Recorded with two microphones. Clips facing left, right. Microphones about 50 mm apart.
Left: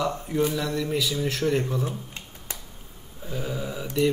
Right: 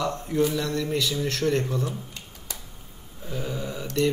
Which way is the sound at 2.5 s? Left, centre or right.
Left.